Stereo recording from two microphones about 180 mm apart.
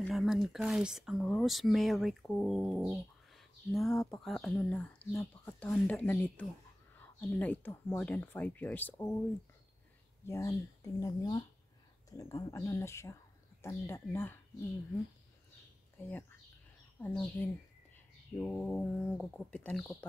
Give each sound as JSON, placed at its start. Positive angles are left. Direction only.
{"t": 0.0, "sound": "speech", "side_deg": 0}
{"t": 10.2, "sound": "speech", "side_deg": 15}
{"t": 16.1, "sound": "speech", "side_deg": 10}